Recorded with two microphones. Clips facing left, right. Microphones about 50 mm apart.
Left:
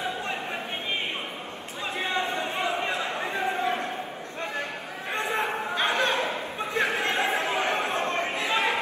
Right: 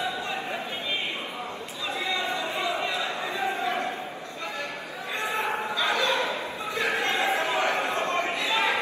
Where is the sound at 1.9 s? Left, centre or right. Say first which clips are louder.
Left 1 dB; left.